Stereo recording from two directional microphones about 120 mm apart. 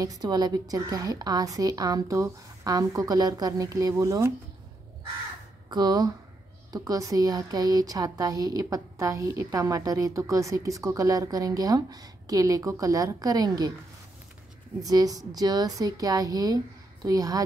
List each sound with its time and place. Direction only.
0.0 s a woman's voice: 30° right (ahead or behind)
5.7 s a woman's voice: 35° right (ahead or behind)
14.8 s a woman's voice: 30° right (ahead or behind)